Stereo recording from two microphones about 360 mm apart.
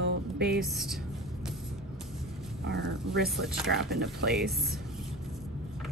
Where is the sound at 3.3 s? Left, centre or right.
Centre.